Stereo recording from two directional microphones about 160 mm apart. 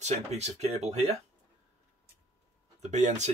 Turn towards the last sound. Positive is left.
turn(degrees=-45)  # may be behind; listen again after turning